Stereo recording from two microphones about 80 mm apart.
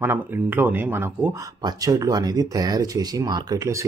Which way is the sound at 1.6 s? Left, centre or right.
Right.